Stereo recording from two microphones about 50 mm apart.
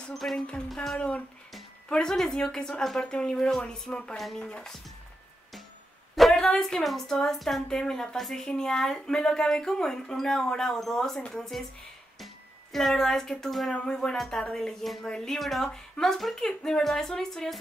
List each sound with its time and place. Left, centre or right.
0.1 s speech: centre
1.9 s speech: centre
6.1 s a sound: centre
6.6 s speech: centre
7.6 s speech: centre
12.7 s speech: centre